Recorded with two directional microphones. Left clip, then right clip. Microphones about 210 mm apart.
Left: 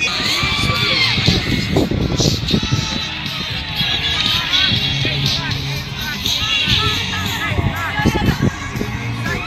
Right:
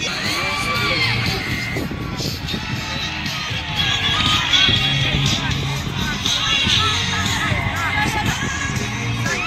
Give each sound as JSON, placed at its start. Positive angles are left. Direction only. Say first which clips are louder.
{"t": 0.4, "sound": "vehicle", "louder": "left 3 dB", "side_deg": -45}
{"t": 0.9, "sound": "a sound", "louder": "left 4 dB", "side_deg": -45}
{"t": 1.2, "sound": "music", "louder": "left 4 dB", "side_deg": 0}
{"t": 3.8, "sound": "music", "louder": "left 1 dB", "side_deg": -35}
{"t": 4.4, "sound": "music", "louder": "even", "side_deg": 0}
{"t": 8.0, "sound": "music", "louder": "left 1 dB", "side_deg": 0}